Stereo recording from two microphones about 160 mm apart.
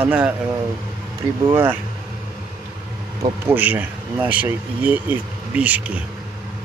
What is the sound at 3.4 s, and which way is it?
Speech, 10° right (ahead or behind).